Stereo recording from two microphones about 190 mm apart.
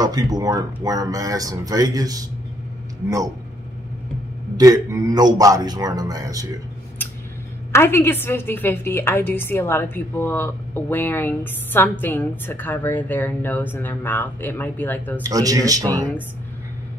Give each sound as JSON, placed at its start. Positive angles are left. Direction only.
{"t": 0.0, "sound": "speech", "side_deg": -20}
{"t": 4.6, "sound": "a man's voice", "side_deg": -15}
{"t": 7.7, "sound": "a woman's voice", "side_deg": 10}
{"t": 15.2, "sound": "a man's voice", "side_deg": -20}